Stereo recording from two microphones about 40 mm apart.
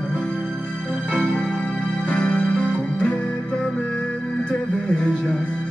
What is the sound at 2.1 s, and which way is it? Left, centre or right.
Music, left.